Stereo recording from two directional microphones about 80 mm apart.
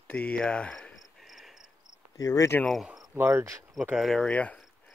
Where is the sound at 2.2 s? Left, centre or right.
Left.